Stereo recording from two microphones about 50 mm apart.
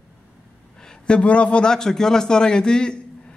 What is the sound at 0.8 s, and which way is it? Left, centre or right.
Speech, left.